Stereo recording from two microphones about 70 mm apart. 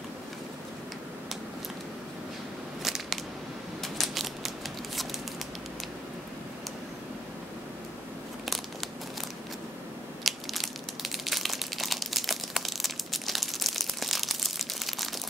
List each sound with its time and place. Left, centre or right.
2.8 s scissors: centre
3.8 s mechanisms: centre
10.2 s crumpling: centre